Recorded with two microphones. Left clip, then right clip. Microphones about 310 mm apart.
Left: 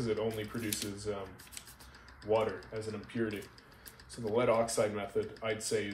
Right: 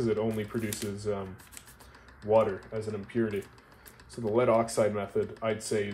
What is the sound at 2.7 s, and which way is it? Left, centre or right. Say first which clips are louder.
Speech: right 5 dB; right.